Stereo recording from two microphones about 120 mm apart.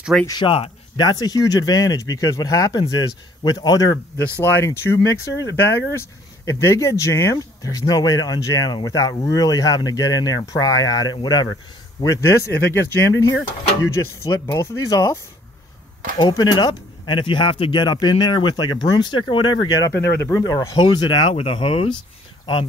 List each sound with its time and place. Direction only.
0.3 s speech: 45° left (ahead or behind)
1.0 s speech: 35° left (ahead or behind)
4.4 s speech: 20° left (ahead or behind)
16.2 s speech: 35° left (ahead or behind)
19.9 s speech: 20° left (ahead or behind)
20.4 s speech: 30° left (ahead or behind)
21.4 s speech: 50° left (ahead or behind)